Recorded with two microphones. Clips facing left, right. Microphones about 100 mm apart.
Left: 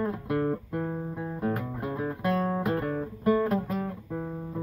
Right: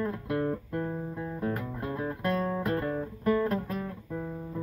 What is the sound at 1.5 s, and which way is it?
Music, 10° left (ahead or behind).